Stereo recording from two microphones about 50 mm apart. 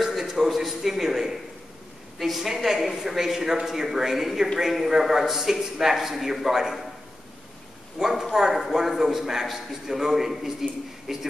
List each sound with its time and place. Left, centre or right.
0.0 s a sound: centre
2.1 s a woman's voice: centre
8.0 s a man's voice: centre